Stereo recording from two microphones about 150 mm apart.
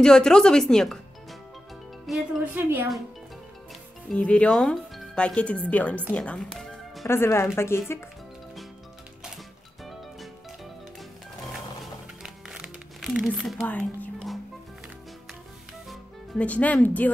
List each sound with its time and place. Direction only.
0.0 s speech: 5° left (ahead or behind)
2.0 s speech: centre (ahead or behind)
2.5 s speech: 15° right (ahead or behind)
4.1 s speech: 5° left (ahead or behind)
6.1 s music: 5° left (ahead or behind)
7.1 s speech: 15° left (ahead or behind)
12.2 s music: 5° right (ahead or behind)
15.9 s speech: 10° left (ahead or behind)